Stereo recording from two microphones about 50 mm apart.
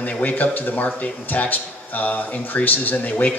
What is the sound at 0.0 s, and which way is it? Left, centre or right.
Speech, left.